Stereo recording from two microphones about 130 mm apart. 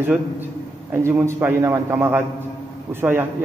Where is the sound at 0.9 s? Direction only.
20° right (ahead or behind).